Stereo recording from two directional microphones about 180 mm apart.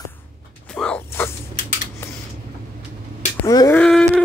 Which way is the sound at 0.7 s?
5° left (ahead or behind).